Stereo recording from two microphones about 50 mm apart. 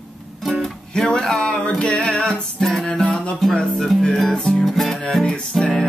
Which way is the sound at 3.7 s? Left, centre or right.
Centre.